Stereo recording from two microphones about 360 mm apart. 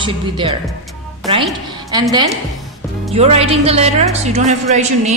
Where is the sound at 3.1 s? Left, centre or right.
Centre.